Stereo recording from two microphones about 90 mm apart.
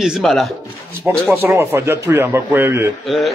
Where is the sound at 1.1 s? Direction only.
25° right (ahead or behind).